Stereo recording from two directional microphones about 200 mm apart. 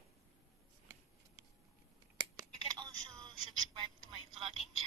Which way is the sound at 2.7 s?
20° right (ahead or behind).